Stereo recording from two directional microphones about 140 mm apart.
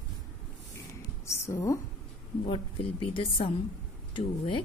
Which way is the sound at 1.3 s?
20° left (ahead or behind).